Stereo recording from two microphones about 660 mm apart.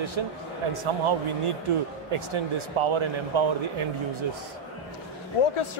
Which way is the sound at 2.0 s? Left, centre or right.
Right.